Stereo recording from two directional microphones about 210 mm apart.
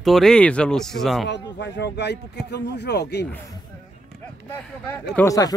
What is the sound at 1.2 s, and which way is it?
Speech, 55° left (ahead or behind).